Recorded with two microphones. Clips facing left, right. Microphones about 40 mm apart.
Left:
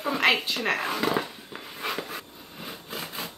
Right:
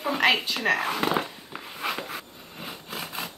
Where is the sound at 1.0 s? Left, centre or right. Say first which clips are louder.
Right 1 dB; right.